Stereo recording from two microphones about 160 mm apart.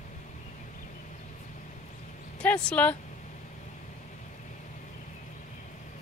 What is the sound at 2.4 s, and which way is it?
Speech, 10° left (ahead or behind).